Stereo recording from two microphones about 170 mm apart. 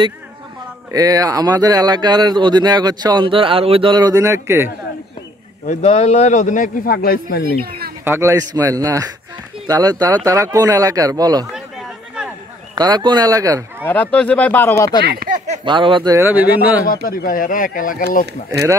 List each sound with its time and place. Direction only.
0.9 s speech: 20° right (ahead or behind)
5.7 s speech: 40° left (ahead or behind); by 7.4 s 60° left (ahead or behind)
8.0 s speech: 15° right (ahead or behind)
12.7 s speech: 25° right (ahead or behind)
13.8 s speech: 10° left (ahead or behind)
15.0 s a sound: 60° right (ahead or behind)
15.6 s a man's voice: 30° right (ahead or behind); by 16.8 s 10° right (ahead or behind)
16.8 s speech: 60° left (ahead or behind)